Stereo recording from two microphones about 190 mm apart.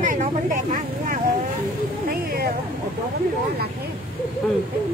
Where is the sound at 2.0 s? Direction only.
55° right (ahead or behind).